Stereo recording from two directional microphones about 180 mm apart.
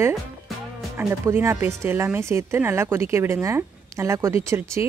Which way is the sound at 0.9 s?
15° right (ahead or behind).